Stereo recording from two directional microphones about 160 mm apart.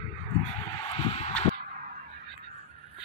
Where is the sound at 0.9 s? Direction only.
40° left (ahead or behind).